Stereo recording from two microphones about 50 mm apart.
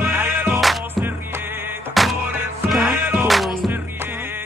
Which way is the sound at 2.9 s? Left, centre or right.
Right.